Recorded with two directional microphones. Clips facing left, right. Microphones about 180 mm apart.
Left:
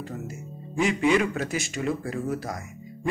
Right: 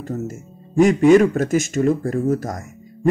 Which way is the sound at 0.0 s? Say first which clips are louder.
Right 8 dB; 45° right (ahead or behind).